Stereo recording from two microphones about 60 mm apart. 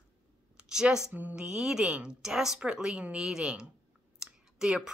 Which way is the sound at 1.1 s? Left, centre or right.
Right.